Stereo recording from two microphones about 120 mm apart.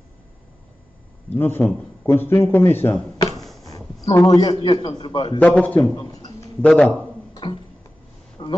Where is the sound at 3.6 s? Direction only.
30° left (ahead or behind).